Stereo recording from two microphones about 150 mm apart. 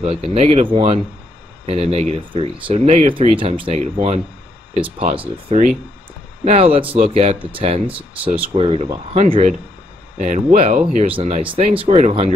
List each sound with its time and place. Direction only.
0.3 s speech: 45° right (ahead or behind)
4.7 s speech: 35° right (ahead or behind)
7.8 s speech: 10° right (ahead or behind)
8.5 s speech: 40° right (ahead or behind); by 11.1 s 55° right (ahead or behind)
11.1 s speech: 40° right (ahead or behind)